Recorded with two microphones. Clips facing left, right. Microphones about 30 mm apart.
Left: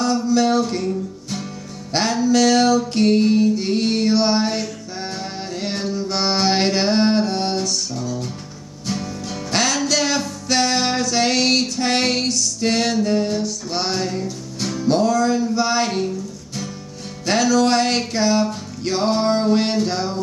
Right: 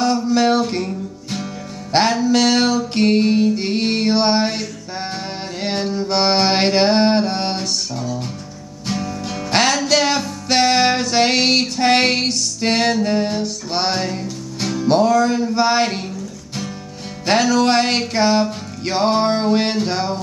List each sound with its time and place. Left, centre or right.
0.0 s music: right
5.6 s a sound: right
9.3 s music: right
17.3 s music: right